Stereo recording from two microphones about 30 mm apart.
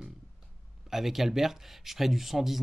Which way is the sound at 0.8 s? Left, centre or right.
Centre.